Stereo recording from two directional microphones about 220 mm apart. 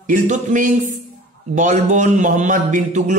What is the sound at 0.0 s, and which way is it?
Speech, 35° right (ahead or behind).